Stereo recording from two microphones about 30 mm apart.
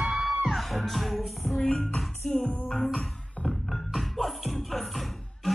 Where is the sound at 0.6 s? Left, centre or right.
Centre.